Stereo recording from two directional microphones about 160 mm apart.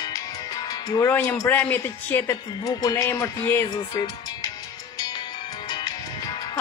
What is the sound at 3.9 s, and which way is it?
Music, 25° left (ahead or behind).